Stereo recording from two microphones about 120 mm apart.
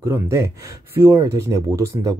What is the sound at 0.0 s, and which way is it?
Speech, 25° right (ahead or behind).